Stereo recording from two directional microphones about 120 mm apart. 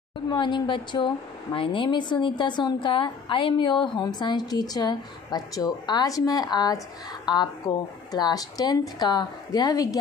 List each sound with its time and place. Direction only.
0.3 s a woman's voice: 40° left (ahead or behind)